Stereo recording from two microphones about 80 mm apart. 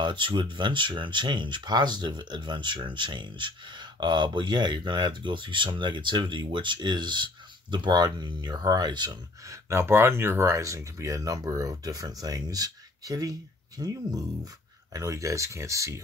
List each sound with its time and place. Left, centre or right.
0.0 s speech: right
9.5 s speech: right